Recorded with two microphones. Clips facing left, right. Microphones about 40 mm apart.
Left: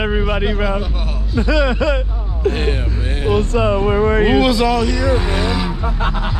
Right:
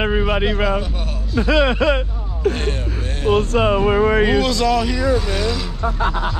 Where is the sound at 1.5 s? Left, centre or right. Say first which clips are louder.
Right 1 dB; right.